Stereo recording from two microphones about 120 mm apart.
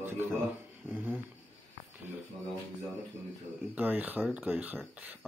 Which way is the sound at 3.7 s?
15° right (ahead or behind).